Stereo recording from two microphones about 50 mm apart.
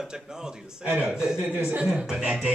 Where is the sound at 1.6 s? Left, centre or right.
Right.